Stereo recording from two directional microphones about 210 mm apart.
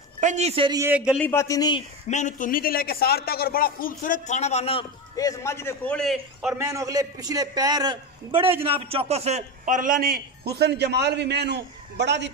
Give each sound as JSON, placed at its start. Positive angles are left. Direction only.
{"t": 0.2, "sound": "a man's voice", "side_deg": -35}
{"t": 1.2, "sound": "a man's voice", "side_deg": 15}
{"t": 2.0, "sound": "a man's voice", "side_deg": 35}
{"t": 6.6, "sound": "a man's voice", "side_deg": -15}